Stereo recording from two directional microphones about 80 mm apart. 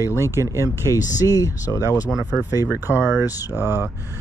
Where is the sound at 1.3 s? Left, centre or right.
Left.